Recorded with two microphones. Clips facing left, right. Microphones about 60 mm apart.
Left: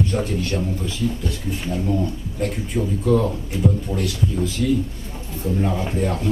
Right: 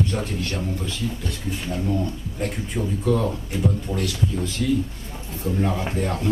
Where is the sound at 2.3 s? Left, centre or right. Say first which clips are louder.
Left 4 dB; centre.